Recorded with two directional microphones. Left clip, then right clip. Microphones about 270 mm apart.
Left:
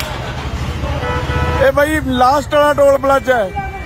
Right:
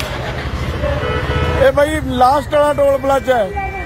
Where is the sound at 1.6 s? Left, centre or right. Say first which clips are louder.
Even; centre.